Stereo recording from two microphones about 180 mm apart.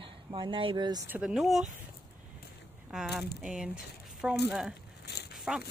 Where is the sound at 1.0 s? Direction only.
5° right (ahead or behind).